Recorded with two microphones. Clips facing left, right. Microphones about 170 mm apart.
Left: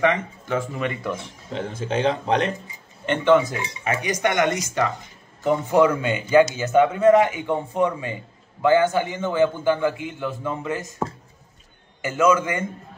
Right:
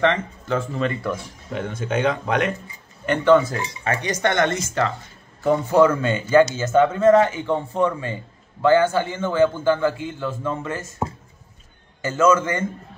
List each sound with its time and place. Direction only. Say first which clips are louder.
0.0 s speech: right 1 dB; 10° left (ahead or behind); by 2.5 s 30° left (ahead or behind)
3.1 s a man's voice: right 2 dB; 15° left (ahead or behind)
12.0 s a man's voice: right 1 dB; 15° left (ahead or behind)